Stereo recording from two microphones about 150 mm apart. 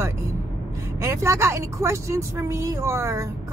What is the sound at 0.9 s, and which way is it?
A woman's voice, 20° right (ahead or behind).